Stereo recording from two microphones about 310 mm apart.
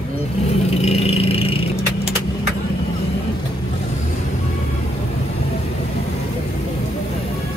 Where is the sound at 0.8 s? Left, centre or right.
Centre.